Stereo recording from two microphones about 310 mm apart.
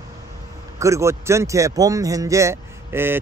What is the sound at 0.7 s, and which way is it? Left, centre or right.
Speech, centre.